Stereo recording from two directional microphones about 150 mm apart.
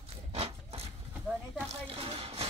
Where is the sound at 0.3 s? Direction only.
40° right (ahead or behind).